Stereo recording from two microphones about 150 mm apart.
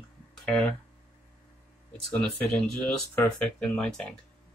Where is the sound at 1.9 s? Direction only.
5° left (ahead or behind).